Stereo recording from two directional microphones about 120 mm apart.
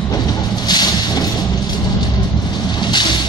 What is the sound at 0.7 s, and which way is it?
Vehicle, 35° left (ahead or behind).